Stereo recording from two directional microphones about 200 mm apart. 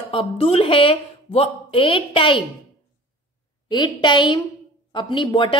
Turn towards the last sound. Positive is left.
turn(degrees=25)  # may be behind; listen again after turning